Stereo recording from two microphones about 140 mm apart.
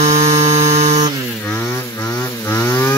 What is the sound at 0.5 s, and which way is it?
Music, 20° right (ahead or behind).